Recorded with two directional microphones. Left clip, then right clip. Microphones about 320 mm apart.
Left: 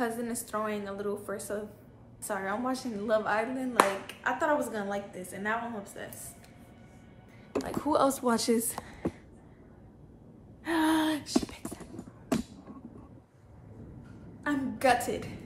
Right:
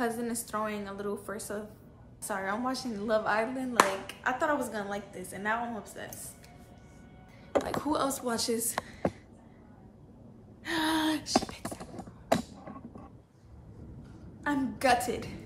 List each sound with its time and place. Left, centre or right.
0.0 s speech: centre
7.6 s speech: centre
7.9 s a woman's voice: centre
10.6 s gasp: centre
14.4 s speech: centre